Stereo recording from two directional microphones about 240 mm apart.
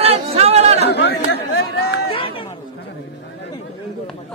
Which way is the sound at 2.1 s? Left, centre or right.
Left.